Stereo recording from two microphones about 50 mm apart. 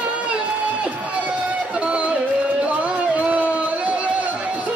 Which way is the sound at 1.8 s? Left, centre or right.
Right.